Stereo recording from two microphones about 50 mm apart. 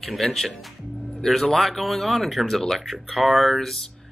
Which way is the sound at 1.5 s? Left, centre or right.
Centre.